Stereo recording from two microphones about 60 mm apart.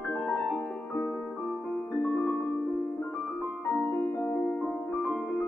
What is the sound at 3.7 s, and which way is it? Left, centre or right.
Music, left.